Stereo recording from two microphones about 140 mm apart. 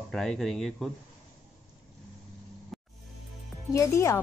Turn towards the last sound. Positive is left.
turn(degrees=20)  # may be behind; listen again after turning